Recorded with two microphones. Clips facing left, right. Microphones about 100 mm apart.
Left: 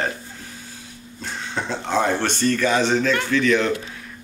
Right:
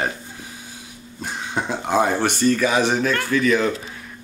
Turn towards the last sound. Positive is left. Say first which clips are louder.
# even
turn(degrees=-5)  # may be behind; listen again after turning